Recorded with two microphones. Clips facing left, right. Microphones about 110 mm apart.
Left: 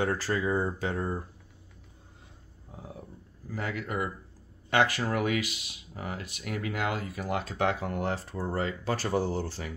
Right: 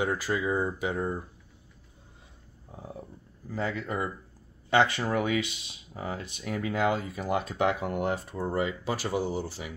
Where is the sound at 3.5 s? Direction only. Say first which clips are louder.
Right 2 dB; 25° right (ahead or behind).